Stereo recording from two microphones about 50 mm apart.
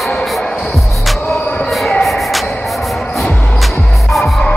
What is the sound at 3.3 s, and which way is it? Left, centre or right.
Music, left.